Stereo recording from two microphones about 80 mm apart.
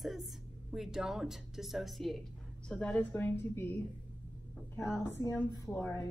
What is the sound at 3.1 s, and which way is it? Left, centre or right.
Speech, left.